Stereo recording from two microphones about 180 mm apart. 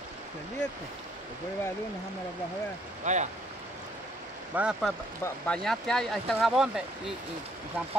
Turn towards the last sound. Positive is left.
turn(degrees=-5)  # may be behind; listen again after turning